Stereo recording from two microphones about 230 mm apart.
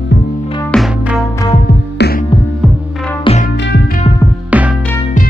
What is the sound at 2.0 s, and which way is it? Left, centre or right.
Hum, left.